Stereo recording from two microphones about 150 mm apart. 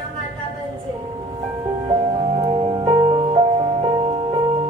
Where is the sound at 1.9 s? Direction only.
35° right (ahead or behind).